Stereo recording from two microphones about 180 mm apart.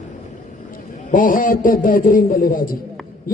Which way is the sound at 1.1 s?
50° left (ahead or behind).